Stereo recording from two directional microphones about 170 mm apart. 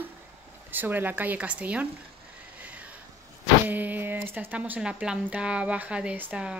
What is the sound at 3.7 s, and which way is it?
A woman's voice, 10° right (ahead or behind).